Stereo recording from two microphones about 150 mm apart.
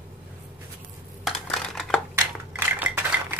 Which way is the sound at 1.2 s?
5° left (ahead or behind).